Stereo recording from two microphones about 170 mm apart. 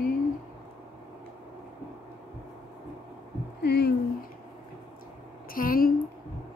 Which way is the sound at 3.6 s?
70° left (ahead or behind).